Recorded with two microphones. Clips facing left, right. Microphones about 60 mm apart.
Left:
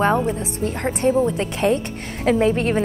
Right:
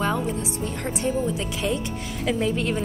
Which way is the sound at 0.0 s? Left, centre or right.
Left.